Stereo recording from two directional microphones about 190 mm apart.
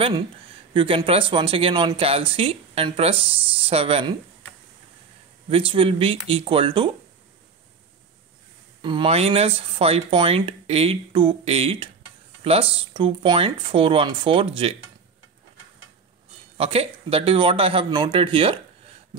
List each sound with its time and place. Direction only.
0.7 s speech: 30° right (ahead or behind)
5.5 s speech: 30° right (ahead or behind)
8.8 s speech: 25° right (ahead or behind)
16.5 s speech: 30° right (ahead or behind)